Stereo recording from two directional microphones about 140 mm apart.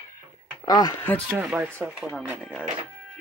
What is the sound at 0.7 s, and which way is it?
Speech, 30° left (ahead or behind).